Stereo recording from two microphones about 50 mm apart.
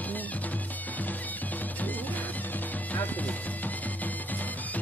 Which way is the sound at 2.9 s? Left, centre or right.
Left.